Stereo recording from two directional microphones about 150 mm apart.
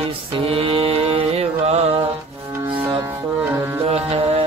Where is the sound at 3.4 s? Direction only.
15° right (ahead or behind).